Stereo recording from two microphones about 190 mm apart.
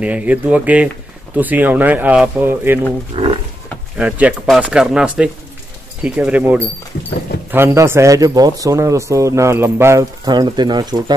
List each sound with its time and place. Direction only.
0.0 s a man's voice: 10° right (ahead or behind)
3.1 s roaring cats: 25° right (ahead or behind)
3.9 s a man's voice: 5° right (ahead or behind); by 11.1 s 20° right (ahead or behind)